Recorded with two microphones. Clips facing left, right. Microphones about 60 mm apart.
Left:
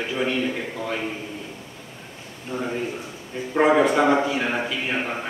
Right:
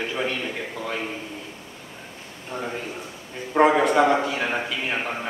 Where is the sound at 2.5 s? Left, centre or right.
Centre.